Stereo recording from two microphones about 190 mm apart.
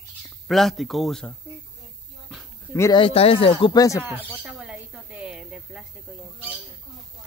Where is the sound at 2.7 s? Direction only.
15° left (ahead or behind).